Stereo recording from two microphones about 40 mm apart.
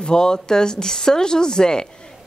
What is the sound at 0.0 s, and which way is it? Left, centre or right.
A woman's voice, centre.